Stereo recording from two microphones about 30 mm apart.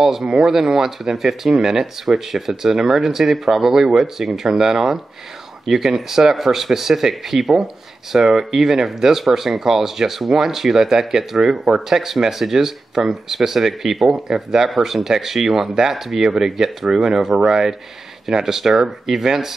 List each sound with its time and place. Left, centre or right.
0.0 s speech: centre
0.3 s speech: right